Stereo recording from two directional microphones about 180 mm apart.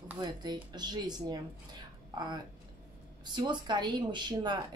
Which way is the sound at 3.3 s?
25° right (ahead or behind).